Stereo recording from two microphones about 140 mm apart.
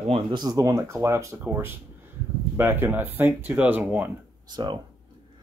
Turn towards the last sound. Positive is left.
turn(degrees=-30)  # may be behind; listen again after turning